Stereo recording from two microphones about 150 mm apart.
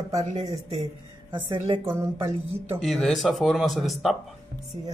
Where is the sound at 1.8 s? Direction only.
15° right (ahead or behind).